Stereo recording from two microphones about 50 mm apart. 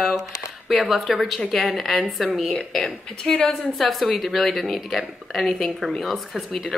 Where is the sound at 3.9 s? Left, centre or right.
Centre.